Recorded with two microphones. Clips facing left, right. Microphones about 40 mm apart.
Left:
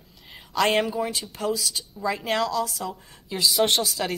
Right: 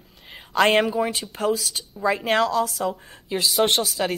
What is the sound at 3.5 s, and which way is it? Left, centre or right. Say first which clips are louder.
Speech: right 1 dB; centre.